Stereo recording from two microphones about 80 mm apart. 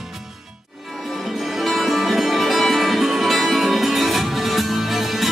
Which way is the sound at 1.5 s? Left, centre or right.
Centre.